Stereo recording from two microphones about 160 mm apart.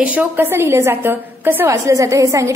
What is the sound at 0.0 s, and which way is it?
A woman's voice, 10° right (ahead or behind).